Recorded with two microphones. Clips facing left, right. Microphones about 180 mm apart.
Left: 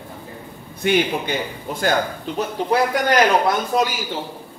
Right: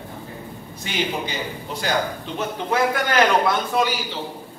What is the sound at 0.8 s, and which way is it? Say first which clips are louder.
A man's voice: left 7 dB; 55° left (ahead or behind).